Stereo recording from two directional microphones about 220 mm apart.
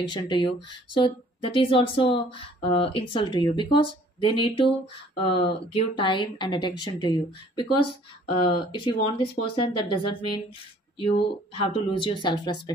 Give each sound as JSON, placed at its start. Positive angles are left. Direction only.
{"t": 0.1, "sound": "speech", "side_deg": 20}